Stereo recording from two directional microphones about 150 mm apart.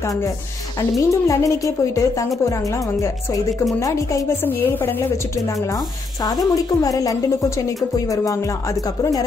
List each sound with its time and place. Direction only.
0.9 s speech: 20° left (ahead or behind)
3.8 s a woman's voice: 20° left (ahead or behind)
6.2 s speech: 25° left (ahead or behind)